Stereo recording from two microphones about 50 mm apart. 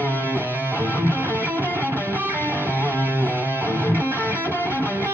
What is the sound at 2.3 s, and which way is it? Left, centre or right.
Music, left.